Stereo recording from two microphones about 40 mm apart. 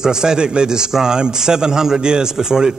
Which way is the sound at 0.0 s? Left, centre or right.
Centre.